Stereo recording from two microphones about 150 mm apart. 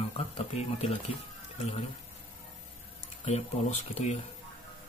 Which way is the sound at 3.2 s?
45° left (ahead or behind).